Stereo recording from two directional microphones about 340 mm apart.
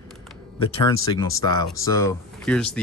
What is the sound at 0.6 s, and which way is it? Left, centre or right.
Speech, centre.